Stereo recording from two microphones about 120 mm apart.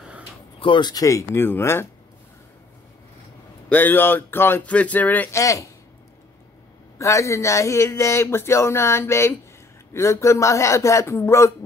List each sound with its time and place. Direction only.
0.6 s speech: 40° left (ahead or behind); by 1.9 s 20° left (ahead or behind)
3.6 s speech: 15° left (ahead or behind)
5.3 s speech: 25° left (ahead or behind)
7.0 s speech: 25° left (ahead or behind)